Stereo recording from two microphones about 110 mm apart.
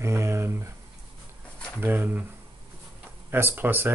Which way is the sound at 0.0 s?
25° right (ahead or behind).